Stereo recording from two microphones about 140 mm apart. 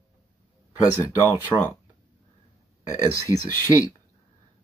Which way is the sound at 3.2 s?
20° right (ahead or behind).